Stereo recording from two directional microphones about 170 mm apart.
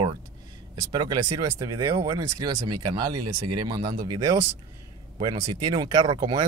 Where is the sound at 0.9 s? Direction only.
25° right (ahead or behind).